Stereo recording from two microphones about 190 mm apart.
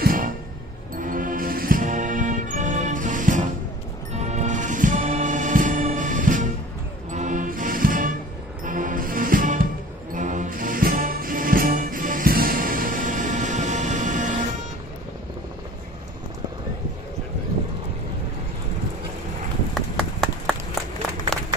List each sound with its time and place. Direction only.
0.0 s music: 50° right (ahead or behind)
19.7 s run: centre (ahead or behind)